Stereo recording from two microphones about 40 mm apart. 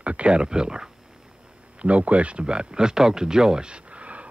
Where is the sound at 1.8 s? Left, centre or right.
Right; by 3.7 s centre.